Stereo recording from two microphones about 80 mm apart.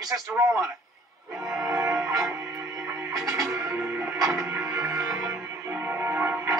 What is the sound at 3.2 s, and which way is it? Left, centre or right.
Music, centre.